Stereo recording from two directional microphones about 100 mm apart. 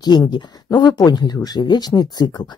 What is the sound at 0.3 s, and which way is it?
Speech, 45° left (ahead or behind).